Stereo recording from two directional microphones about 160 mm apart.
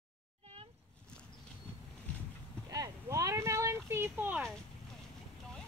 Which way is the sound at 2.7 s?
20° right (ahead or behind).